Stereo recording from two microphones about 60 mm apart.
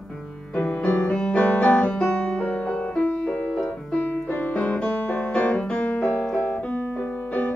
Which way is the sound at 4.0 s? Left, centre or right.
Left.